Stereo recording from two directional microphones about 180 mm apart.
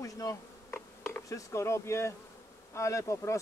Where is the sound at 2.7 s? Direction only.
15° left (ahead or behind).